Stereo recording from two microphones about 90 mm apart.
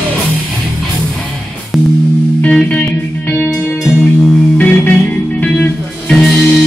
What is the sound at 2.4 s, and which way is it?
Music, 15° left (ahead or behind).